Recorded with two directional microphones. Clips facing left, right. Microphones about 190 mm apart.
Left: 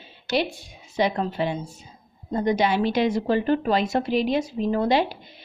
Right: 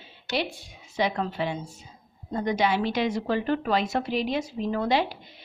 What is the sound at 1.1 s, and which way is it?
A woman's voice, 35° left (ahead or behind).